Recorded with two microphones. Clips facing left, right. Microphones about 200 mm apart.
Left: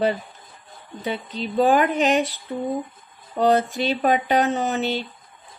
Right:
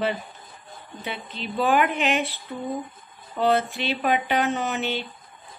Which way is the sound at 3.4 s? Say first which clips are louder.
Left 3 dB; 35° left (ahead or behind).